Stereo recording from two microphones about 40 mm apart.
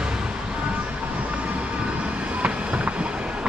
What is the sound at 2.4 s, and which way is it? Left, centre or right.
Train, right.